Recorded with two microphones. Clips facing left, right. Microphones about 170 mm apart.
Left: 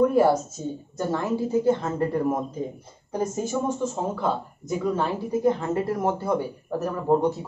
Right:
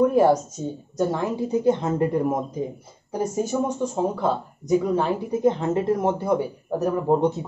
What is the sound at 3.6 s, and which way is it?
Speech, 15° right (ahead or behind).